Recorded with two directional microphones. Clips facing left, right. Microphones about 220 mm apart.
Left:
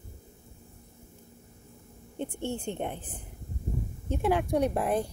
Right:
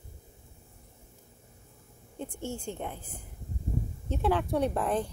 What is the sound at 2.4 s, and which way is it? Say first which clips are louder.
Speech: left 3 dB; 60° left (ahead or behind).